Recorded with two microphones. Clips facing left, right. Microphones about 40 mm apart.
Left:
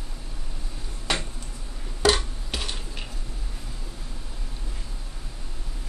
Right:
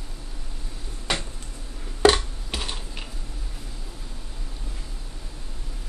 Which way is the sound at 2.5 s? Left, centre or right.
Centre.